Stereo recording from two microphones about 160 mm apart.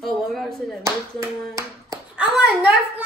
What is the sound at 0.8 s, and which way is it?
Clapping, 20° right (ahead or behind).